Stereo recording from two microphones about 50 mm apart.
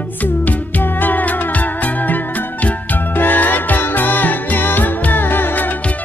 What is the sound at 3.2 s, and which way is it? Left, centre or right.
Music, left.